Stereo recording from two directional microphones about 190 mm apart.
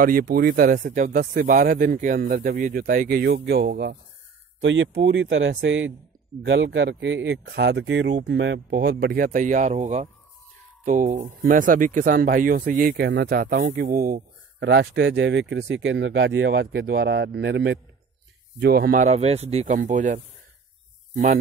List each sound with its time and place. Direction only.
0.0 s speech: 50° right (ahead or behind)
4.6 s speech: 75° right (ahead or behind)
6.4 s speech: 70° right (ahead or behind)
18.6 s speech: 55° right (ahead or behind)